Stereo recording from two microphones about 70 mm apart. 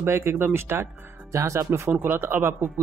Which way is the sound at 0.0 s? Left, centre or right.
Right.